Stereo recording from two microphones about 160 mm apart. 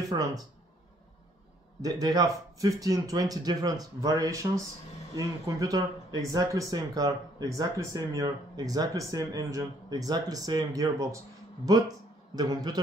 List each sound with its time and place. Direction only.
0.1 s speech: 25° right (ahead or behind)
1.8 s speech: 25° right (ahead or behind)
12.4 s speech: 25° right (ahead or behind)